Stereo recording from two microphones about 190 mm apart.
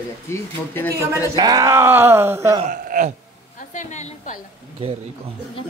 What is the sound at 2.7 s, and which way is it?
Speech, 45° right (ahead or behind).